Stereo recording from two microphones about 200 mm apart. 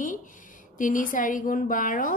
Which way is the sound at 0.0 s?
40° left (ahead or behind).